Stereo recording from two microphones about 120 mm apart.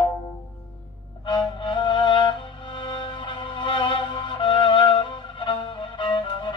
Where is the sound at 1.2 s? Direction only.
40° left (ahead or behind).